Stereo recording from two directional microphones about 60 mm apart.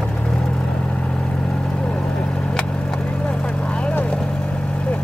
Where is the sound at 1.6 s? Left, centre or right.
Centre.